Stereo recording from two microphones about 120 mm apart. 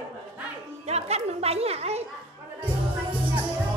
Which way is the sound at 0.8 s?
60° right (ahead or behind).